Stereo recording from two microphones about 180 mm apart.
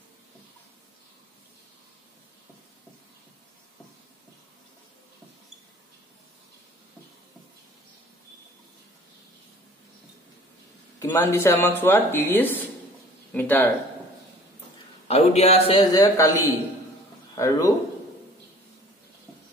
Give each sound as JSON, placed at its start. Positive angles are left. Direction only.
{"t": 11.0, "sound": "speech", "side_deg": 15}
{"t": 15.0, "sound": "a man's voice", "side_deg": 35}
{"t": 15.9, "sound": "speech", "side_deg": 20}